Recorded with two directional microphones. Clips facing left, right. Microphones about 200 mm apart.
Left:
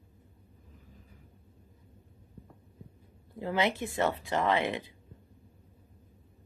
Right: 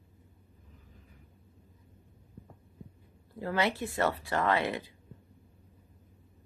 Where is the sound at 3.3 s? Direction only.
20° left (ahead or behind).